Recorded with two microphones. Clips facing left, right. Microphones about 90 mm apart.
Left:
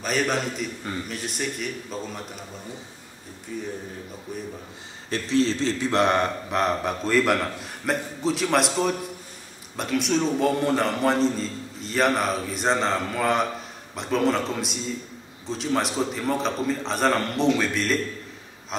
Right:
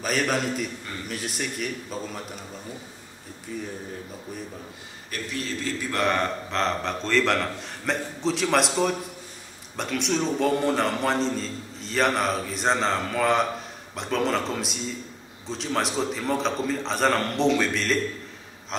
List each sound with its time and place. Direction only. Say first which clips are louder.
0.0 s a man's voice: even; centre (ahead or behind)
3.5 s a man's voice: left 1 dB; centre (ahead or behind)
5.1 s a man's voice: left 9 dB; 25° left (ahead or behind); by 17.9 s centre (ahead or behind)
18.7 s a sound: left 1 dB; 5° left (ahead or behind)